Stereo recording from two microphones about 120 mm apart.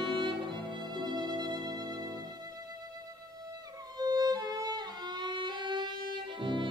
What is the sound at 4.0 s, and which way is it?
Violin, 35° right (ahead or behind).